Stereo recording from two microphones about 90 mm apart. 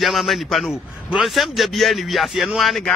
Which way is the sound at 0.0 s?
Centre (ahead or behind).